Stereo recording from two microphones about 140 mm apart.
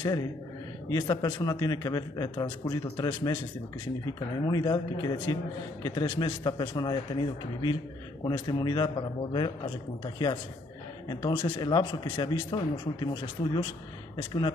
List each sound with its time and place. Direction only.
0.8 s speech: 30° left (ahead or behind)
4.5 s a man's voice: 30° left (ahead or behind)
11.1 s a man's voice: 35° left (ahead or behind)